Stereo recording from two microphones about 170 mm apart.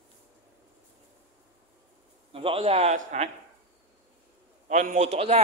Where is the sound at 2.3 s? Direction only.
35° right (ahead or behind).